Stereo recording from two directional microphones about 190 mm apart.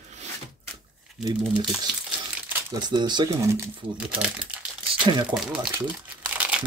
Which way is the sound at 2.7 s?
25° right (ahead or behind).